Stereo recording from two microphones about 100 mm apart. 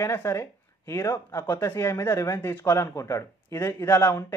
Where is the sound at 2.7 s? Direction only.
35° left (ahead or behind).